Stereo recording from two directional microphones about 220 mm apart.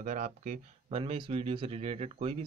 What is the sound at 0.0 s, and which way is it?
Speech, 35° right (ahead or behind).